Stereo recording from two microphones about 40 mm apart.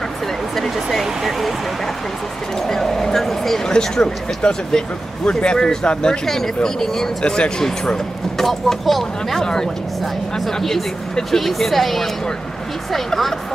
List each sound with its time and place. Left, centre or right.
0.6 s speech: centre
2.6 s speech: centre
3.6 s speech: centre
7.2 s speech: left
8.4 s speech: centre
10.4 s speech: centre